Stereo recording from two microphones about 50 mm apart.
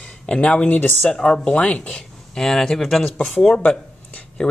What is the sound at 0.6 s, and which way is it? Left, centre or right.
Speech, left.